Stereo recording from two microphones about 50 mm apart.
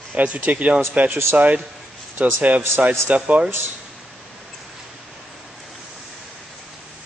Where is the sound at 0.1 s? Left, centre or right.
Right.